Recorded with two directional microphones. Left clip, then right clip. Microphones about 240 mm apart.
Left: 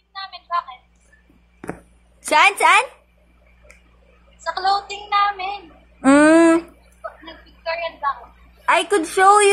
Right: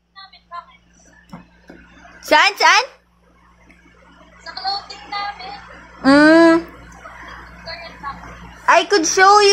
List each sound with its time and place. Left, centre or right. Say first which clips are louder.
2.2 s a woman's voice: right 1 dB; centre
4.4 s music: left 5 dB; left
6.0 s a sound: right 2 dB; centre
7.6 s vehicle: left 9 dB; left
8.6 s a woman's voice: right 4 dB; centre